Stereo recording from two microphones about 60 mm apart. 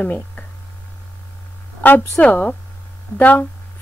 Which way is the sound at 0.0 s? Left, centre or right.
Left.